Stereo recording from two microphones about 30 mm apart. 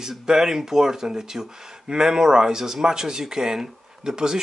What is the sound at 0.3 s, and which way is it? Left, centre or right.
Speech, centre.